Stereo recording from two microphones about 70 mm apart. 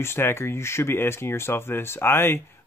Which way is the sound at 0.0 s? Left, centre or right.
Left.